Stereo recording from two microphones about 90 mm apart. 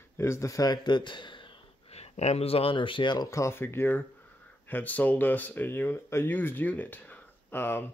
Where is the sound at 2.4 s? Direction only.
90° left; by 3.3 s 60° left (ahead or behind).